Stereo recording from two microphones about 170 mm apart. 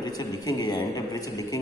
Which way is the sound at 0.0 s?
20° left (ahead or behind).